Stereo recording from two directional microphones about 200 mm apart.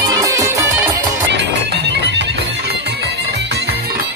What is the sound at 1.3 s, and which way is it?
Music, 60° right (ahead or behind).